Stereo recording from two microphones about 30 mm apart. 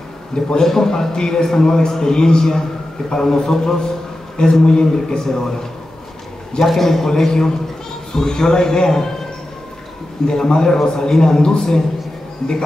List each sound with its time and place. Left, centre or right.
0.6 s a man's voice: centre
4.9 s a man's voice: centre
6.6 s a man's voice: centre
10.2 s a man's voice: left